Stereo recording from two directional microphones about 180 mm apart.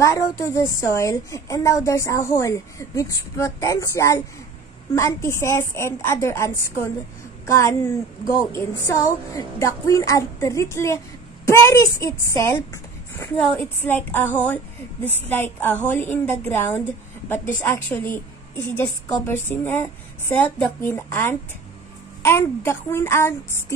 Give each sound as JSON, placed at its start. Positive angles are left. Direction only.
{"t": 0.0, "sound": "a woman's voice", "side_deg": 15}